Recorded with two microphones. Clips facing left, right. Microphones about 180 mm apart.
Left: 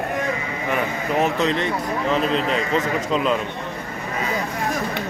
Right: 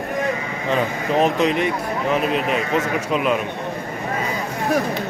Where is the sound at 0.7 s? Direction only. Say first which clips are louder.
Right 3 dB; 20° right (ahead or behind).